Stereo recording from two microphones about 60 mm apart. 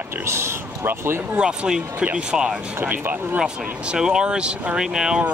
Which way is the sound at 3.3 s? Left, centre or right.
Centre.